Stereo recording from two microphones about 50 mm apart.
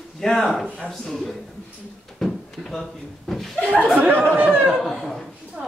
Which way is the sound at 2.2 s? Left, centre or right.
Centre.